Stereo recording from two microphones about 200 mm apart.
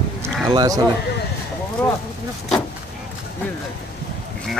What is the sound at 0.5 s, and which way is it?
Speech, 20° right (ahead or behind).